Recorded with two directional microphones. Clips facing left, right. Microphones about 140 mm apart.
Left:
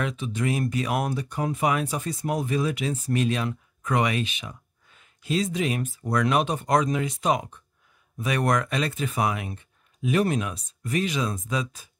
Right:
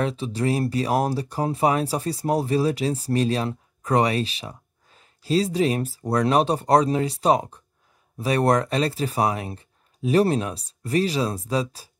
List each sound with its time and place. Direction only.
0.0 s speech: 35° right (ahead or behind)